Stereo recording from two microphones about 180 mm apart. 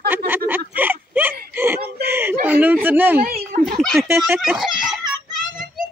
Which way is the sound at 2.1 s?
10° right (ahead or behind).